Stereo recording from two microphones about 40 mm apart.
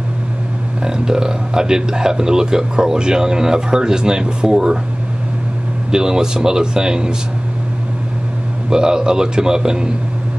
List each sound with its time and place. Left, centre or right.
0.8 s a man's voice: centre
5.9 s a man's voice: centre
8.6 s a man's voice: centre